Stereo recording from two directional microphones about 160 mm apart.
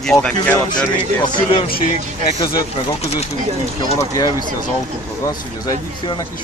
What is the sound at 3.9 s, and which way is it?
Speech, 25° left (ahead or behind).